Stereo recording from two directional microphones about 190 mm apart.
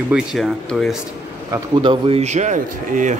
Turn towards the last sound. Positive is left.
turn(degrees=-45)  # may be behind; listen again after turning